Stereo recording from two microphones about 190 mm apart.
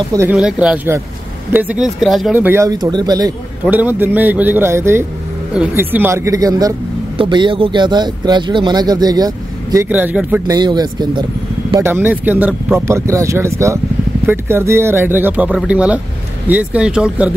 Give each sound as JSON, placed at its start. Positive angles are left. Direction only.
{"t": 0.1, "sound": "speech", "side_deg": -15}
{"t": 3.6, "sound": "speech", "side_deg": -10}
{"t": 9.8, "sound": "speech", "side_deg": -10}
{"t": 10.4, "sound": "speech", "side_deg": -20}
{"t": 11.8, "sound": "speech", "side_deg": -10}